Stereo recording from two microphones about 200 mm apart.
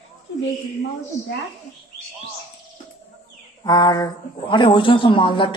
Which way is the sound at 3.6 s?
20° left (ahead or behind).